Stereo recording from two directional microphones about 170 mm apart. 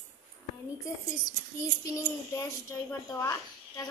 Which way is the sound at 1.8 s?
20° left (ahead or behind).